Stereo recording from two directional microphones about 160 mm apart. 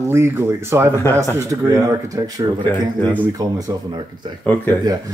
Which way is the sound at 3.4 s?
25° right (ahead or behind).